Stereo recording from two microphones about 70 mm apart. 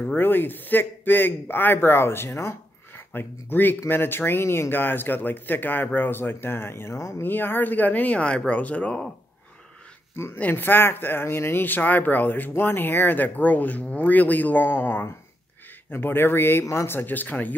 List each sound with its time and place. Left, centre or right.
0.0 s a man's voice: left
7.2 s speech: left
10.1 s a man's voice: left